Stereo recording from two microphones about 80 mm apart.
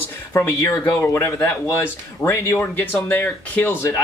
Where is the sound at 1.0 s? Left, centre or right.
Left.